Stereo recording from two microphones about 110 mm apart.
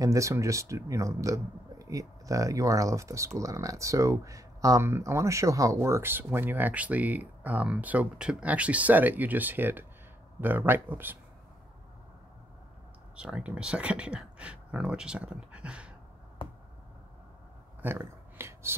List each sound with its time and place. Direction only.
0.0 s speech: 30° right (ahead or behind)
13.1 s speech: 10° right (ahead or behind)
17.8 s a sound: 25° right (ahead or behind)